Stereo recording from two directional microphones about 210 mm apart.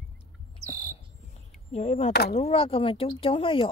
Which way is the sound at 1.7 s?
30° left (ahead or behind).